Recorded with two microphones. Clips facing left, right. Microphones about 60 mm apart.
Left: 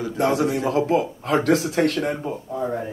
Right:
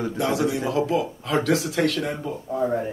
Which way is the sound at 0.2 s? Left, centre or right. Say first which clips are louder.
Left 4 dB; left.